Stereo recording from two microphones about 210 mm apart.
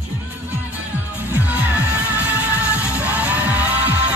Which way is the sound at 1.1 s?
10° right (ahead or behind).